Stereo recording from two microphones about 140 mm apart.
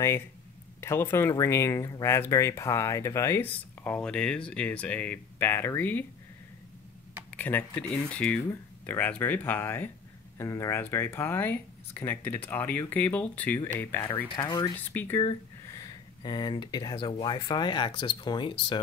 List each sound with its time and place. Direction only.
0.7 s speech: 15° left (ahead or behind)
7.2 s speech: 15° left (ahead or behind)
14.3 s speech: 30° left (ahead or behind)
14.9 s speech: 15° left (ahead or behind)
15.7 s speech: 30° left (ahead or behind)